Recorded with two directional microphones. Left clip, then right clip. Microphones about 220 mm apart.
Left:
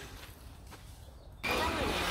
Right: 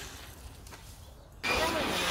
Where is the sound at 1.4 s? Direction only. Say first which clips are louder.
Right 3 dB; 40° right (ahead or behind).